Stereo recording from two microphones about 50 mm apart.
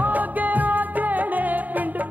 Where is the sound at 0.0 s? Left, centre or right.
Right.